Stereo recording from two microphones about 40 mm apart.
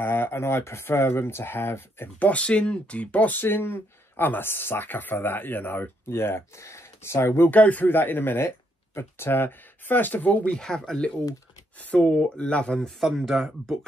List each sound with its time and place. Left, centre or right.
0.0 s speech: left
2.1 s speech: left
3.3 s speech: left
7.4 s speech: left
7.9 s speech: left
10.5 s speech: centre
11.9 s speech: left
13.0 s speech: centre